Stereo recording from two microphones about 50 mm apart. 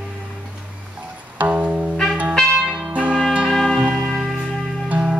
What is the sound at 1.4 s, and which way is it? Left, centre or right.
Music, right.